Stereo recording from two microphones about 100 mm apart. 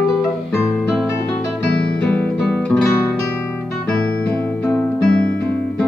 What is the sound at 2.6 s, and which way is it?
Guitar, 5° left (ahead or behind).